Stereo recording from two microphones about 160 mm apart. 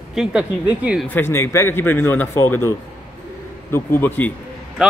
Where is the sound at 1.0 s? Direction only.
15° left (ahead or behind).